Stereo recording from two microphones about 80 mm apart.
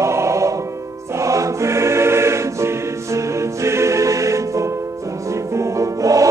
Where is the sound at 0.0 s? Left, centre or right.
Right.